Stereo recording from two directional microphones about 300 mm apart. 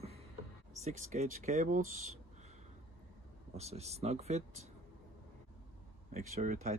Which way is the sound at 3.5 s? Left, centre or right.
Right.